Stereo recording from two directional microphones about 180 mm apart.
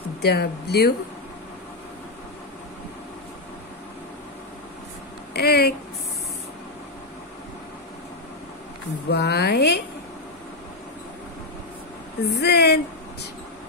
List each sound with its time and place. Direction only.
0.2 s speech: 65° left (ahead or behind)
5.3 s speech: 60° left (ahead or behind)
9.1 s speech: 65° left (ahead or behind)
12.3 s speech: 65° left (ahead or behind)